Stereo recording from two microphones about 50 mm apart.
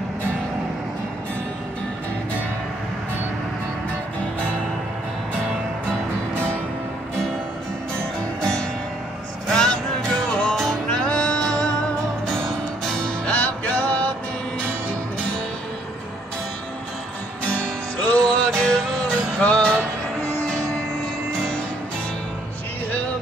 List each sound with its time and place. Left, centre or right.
8.4 s music: centre
13.3 s music: left
18.2 s music: centre